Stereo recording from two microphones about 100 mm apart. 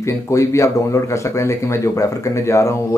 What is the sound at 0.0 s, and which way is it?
Speech, 30° left (ahead or behind).